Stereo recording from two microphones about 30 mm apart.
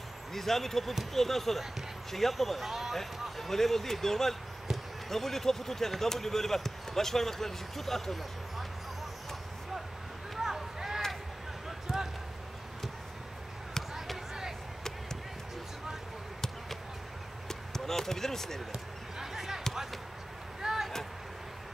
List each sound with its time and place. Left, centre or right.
0.3 s speech: centre
2.6 s speech: centre
3.0 s speech: centre
10.4 s a sound: centre
11.9 s basketball bounce: centre
17.5 s basketball bounce: centre
18.7 s basketball bounce: centre
20.6 s a sound: centre